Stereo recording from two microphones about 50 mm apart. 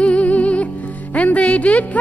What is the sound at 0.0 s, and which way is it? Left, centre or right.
Music, left.